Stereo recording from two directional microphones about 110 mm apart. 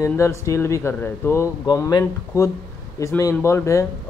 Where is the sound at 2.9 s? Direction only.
30° left (ahead or behind).